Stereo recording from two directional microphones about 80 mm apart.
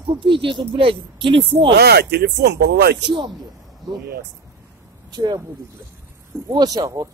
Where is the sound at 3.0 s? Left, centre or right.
Right.